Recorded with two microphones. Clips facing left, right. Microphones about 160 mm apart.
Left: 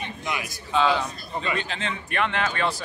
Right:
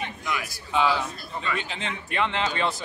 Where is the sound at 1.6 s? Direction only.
15° right (ahead or behind).